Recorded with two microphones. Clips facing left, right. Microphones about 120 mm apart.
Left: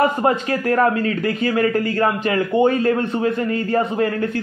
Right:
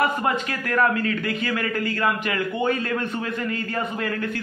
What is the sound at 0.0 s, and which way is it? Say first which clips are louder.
A man's voice: left 5 dB; 30° left (ahead or behind).